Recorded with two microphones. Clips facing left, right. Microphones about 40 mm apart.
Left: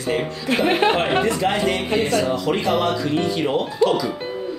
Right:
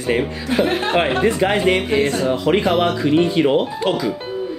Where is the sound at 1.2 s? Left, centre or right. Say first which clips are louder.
Right 4 dB; right.